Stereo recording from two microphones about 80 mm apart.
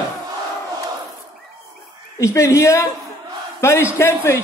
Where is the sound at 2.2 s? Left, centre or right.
Left.